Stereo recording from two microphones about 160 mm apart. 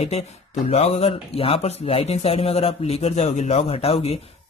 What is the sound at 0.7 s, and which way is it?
Speech, 40° left (ahead or behind).